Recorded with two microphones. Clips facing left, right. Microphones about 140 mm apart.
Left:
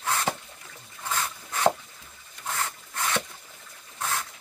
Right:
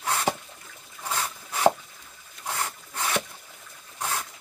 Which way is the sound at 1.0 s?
10° right (ahead or behind).